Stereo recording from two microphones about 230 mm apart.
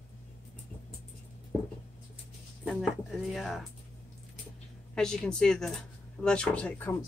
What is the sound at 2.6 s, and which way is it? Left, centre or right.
Speech, centre.